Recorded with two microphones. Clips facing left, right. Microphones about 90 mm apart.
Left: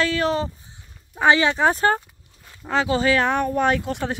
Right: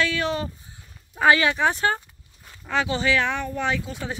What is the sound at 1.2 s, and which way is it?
Speech, 25° left (ahead or behind).